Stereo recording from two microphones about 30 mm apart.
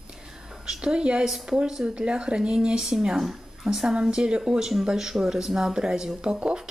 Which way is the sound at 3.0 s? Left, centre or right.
Centre.